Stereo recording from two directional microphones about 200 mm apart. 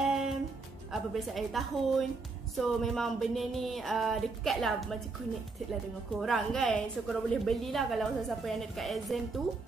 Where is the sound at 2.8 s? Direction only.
Centre (ahead or behind).